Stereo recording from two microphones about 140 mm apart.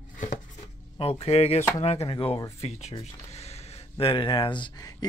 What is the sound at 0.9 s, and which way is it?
Speech, 45° left (ahead or behind).